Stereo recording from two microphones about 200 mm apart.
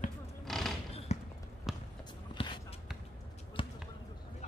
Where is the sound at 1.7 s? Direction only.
Centre (ahead or behind).